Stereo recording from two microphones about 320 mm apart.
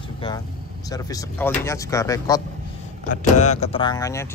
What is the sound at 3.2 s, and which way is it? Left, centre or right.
Speech, left.